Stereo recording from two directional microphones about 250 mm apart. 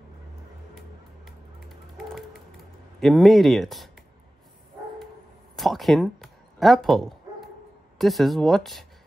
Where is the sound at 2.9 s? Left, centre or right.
Centre.